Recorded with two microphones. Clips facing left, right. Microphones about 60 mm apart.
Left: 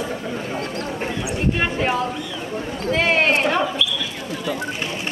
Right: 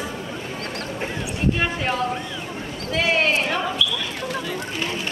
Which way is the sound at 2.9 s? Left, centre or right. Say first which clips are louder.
Left 2 dB; left.